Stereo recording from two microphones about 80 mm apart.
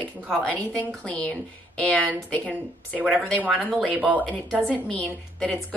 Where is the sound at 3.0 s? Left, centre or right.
Centre.